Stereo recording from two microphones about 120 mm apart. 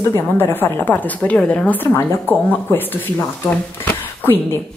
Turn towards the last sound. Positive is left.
turn(degrees=20)  # may be behind; listen again after turning